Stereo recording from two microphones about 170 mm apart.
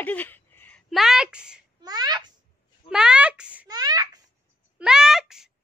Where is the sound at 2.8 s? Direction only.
5° right (ahead or behind).